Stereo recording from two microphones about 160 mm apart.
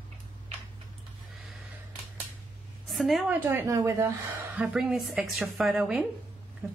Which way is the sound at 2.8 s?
Centre (ahead or behind).